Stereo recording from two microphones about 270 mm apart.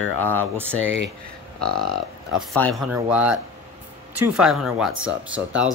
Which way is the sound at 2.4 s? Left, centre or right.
Centre.